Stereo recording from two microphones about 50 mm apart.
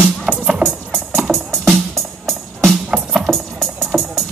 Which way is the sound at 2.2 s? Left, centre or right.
Centre.